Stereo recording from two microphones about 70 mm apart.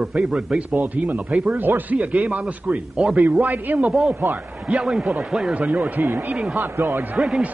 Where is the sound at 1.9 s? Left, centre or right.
Centre.